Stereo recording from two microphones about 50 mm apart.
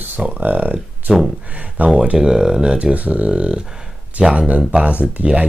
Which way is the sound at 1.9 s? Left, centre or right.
Right.